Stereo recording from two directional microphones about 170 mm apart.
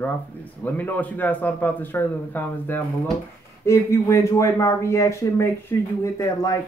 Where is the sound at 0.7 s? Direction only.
10° left (ahead or behind).